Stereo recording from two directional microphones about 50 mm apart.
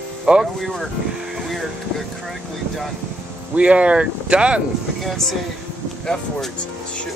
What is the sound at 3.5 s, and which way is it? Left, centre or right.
Speech, right.